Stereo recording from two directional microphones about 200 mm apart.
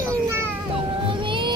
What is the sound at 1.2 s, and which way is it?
Music, 25° right (ahead or behind).